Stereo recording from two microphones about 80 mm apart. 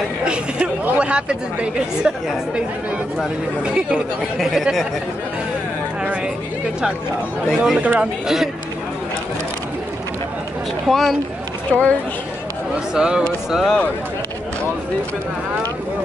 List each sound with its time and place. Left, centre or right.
0.2 s speech: centre
3.6 s speech: centre
7.4 s speech: centre
7.8 s speech: centre
10.9 s speech: centre
11.7 s speech: centre
12.9 s speech: centre